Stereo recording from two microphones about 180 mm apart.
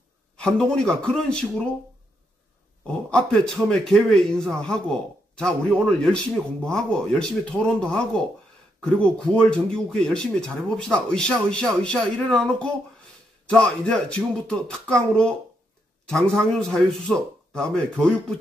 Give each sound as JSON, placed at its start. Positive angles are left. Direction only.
{"t": 0.4, "sound": "speech", "side_deg": 5}
{"t": 3.1, "sound": "speech", "side_deg": 5}